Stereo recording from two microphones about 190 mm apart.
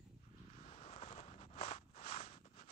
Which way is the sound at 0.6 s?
30° left (ahead or behind).